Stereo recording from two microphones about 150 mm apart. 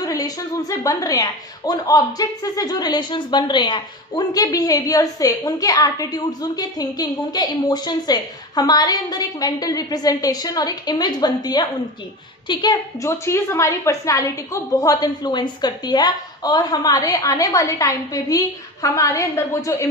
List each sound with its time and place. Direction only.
0.0 s a woman's voice: 25° left (ahead or behind)